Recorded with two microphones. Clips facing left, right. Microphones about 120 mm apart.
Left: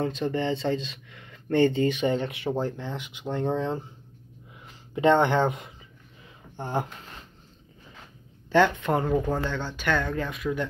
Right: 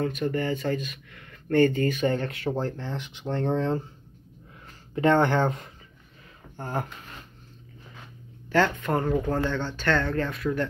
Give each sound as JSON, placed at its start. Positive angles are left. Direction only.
{"t": 0.0, "sound": "speech", "side_deg": 25}
{"t": 8.5, "sound": "speech", "side_deg": 20}